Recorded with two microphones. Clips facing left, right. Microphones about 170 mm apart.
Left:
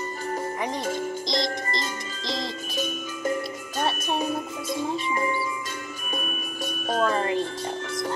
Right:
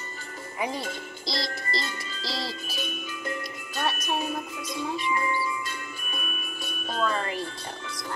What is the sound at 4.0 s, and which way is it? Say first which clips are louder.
Music: left 3 dB; 35° left (ahead or behind).